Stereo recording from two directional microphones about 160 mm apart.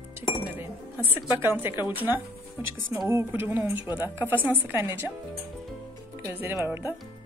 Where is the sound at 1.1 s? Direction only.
15° right (ahead or behind).